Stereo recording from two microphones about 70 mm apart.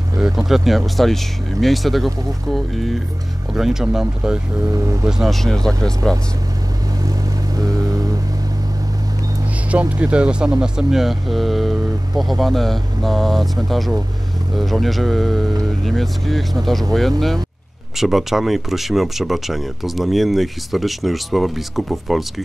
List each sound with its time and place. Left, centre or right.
0.2 s speech: centre
4.6 s speech: right
5.0 s speech: centre
7.0 s vehicle: right
9.7 s speech: centre
17.9 s speech: centre